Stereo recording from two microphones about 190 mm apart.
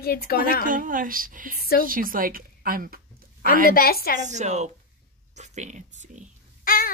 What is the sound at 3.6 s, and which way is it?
Child singing, 50° left (ahead or behind).